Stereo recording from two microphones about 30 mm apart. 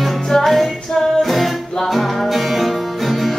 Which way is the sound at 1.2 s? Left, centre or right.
Centre.